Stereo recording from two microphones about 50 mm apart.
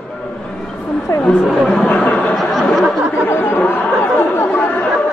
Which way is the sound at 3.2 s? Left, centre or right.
Left.